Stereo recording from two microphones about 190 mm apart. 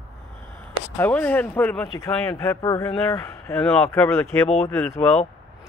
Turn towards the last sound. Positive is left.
turn(degrees=10)  # may be behind; listen again after turning